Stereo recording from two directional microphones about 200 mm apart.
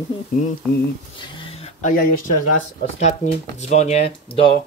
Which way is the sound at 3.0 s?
35° left (ahead or behind).